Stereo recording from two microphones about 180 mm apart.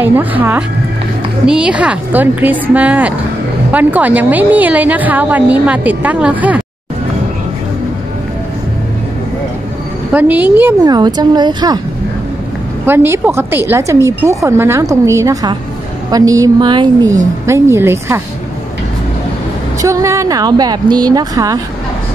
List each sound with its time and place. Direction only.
0.0 s a woman's voice: 10° right (ahead or behind)
10.1 s a woman's voice: 10° right (ahead or behind)
10.8 s speech: 25° right (ahead or behind)
12.8 s a woman's voice: 10° right (ahead or behind)
19.8 s speech: 15° right (ahead or behind)